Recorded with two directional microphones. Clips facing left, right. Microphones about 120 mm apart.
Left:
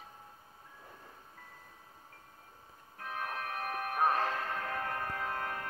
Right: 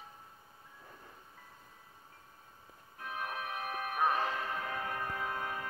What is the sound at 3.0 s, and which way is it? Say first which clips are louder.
Music: left 1 dB; 5° right (ahead or behind).